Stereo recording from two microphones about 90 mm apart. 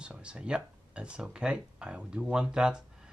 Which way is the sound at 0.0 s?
10° right (ahead or behind).